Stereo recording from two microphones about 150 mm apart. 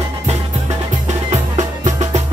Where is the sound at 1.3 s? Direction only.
50° right (ahead or behind).